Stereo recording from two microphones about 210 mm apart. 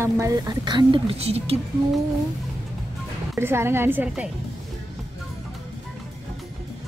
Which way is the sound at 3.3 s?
10° right (ahead or behind).